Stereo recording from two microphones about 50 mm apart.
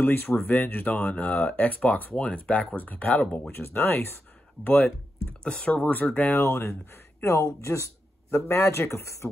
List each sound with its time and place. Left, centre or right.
0.0 s speech: left
0.5 s speech: left
3.5 s speech: left
4.6 s speech: left
5.4 s speech: centre; by 7.2 s left
8.3 s speech: left